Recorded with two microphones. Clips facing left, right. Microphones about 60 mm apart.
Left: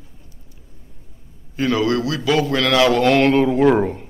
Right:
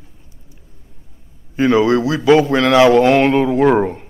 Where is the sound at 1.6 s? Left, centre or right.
Right.